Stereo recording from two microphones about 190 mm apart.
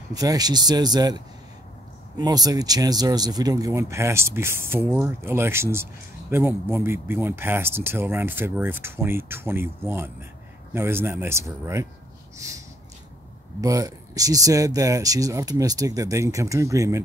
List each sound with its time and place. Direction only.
0.1 s speech: 20° right (ahead or behind)